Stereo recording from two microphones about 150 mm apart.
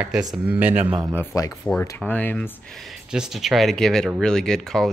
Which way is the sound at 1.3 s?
25° left (ahead or behind).